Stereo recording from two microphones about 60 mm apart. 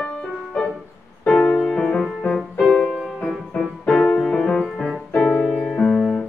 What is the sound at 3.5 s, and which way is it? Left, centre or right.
Music, centre.